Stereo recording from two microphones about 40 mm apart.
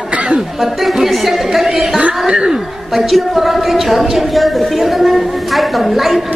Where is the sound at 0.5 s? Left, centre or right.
Centre.